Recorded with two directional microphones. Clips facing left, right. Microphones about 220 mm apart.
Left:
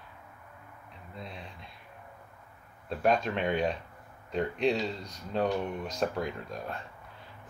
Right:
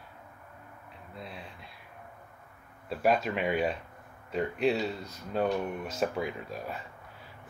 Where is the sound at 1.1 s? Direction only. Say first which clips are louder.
Even; 5° right (ahead or behind).